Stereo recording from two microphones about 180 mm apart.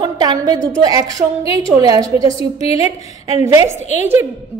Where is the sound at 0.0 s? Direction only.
20° right (ahead or behind).